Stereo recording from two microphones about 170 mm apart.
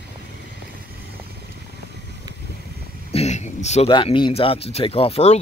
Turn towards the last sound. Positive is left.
turn(degrees=40)  # may be behind; listen again after turning